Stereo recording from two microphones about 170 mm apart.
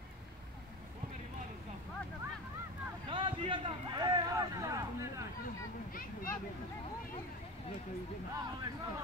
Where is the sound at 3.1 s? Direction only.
30° right (ahead or behind).